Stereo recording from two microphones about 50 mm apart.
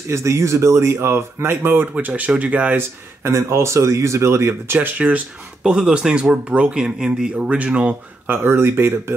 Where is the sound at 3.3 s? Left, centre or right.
Right.